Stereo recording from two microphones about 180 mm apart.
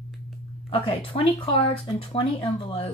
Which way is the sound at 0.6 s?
30° left (ahead or behind).